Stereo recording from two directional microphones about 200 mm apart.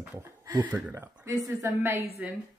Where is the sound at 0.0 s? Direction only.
15° right (ahead or behind).